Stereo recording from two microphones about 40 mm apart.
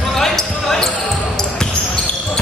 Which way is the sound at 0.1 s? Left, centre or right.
Centre.